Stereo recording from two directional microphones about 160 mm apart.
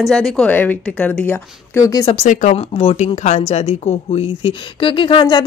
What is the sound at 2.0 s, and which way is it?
A woman's voice, 45° left (ahead or behind).